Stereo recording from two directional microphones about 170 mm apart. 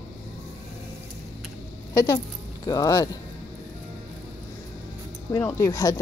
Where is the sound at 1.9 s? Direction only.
15° left (ahead or behind).